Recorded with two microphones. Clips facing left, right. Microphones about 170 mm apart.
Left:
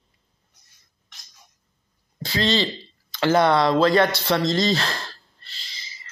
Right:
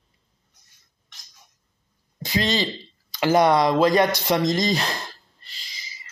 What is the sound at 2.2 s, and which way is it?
Speech, 15° right (ahead or behind).